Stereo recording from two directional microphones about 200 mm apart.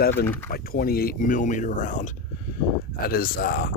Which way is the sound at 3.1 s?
50° left (ahead or behind).